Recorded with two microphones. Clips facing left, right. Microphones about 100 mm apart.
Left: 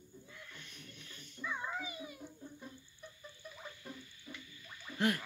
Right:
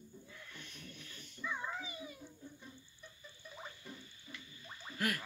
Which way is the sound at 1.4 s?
5° left (ahead or behind).